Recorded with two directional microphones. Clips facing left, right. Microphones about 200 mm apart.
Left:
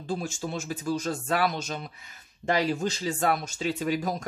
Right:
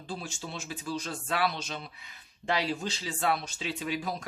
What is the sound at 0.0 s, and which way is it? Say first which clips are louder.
Speech: left 7 dB; 45° left (ahead or behind).